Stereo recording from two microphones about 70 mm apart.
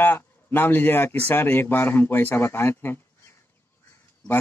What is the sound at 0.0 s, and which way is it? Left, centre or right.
Speech, left.